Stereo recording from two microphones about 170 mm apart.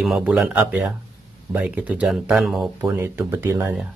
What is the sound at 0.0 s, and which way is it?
Speech, 5° right (ahead or behind).